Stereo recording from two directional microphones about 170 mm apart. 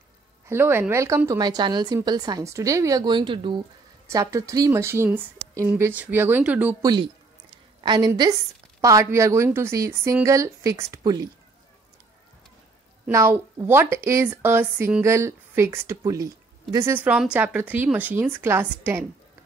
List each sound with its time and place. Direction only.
0.5 s a woman's voice: 15° right (ahead or behind)
6.8 s a woman's voice: 25° right (ahead or behind)
13.1 s a woman's voice: 15° right (ahead or behind)